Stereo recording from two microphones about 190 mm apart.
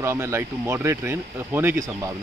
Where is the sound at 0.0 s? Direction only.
15° right (ahead or behind).